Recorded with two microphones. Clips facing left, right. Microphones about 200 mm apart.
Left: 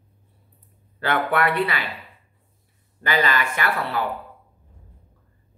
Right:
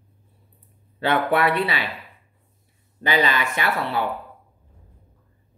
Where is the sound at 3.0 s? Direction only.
20° right (ahead or behind).